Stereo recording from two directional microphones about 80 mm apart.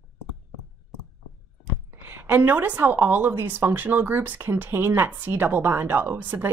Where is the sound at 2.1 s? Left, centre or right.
Right.